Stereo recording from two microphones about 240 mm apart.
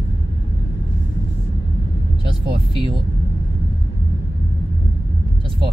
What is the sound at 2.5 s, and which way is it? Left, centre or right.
Speech, right.